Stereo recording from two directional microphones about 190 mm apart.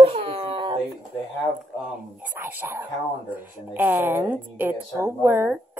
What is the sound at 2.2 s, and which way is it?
A woman's voice, 10° right (ahead or behind).